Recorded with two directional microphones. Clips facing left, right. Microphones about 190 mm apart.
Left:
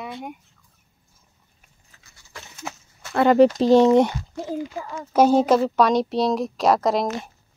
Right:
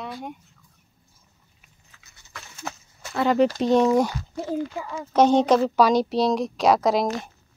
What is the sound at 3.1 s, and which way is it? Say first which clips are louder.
Speech: left 5 dB; 55° left (ahead or behind).